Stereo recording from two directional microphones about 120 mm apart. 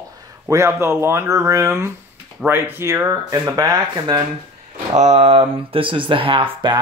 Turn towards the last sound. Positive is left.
turn(degrees=-40)  # may be behind; listen again after turning